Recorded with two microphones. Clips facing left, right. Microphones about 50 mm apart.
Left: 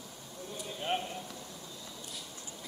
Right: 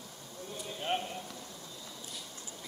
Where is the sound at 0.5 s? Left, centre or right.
Centre.